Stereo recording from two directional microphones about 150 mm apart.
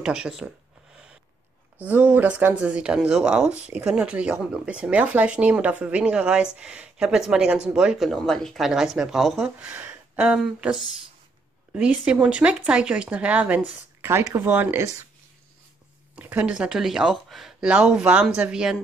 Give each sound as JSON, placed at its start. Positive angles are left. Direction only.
{"t": 0.0, "sound": "speech", "side_deg": -5}
{"t": 1.8, "sound": "speech", "side_deg": -10}
{"t": 16.2, "sound": "speech", "side_deg": -10}